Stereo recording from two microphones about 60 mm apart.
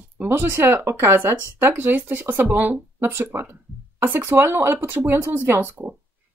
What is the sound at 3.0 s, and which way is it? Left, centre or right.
Speech, right.